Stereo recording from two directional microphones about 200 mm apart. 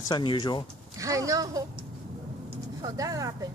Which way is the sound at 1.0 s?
15° right (ahead or behind).